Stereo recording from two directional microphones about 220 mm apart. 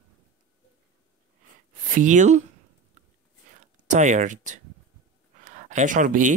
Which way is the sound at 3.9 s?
35° right (ahead or behind).